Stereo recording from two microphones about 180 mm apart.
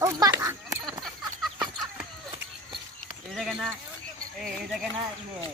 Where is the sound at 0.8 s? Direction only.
Centre (ahead or behind).